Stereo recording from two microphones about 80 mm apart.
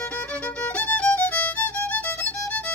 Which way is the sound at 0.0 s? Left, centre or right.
Centre.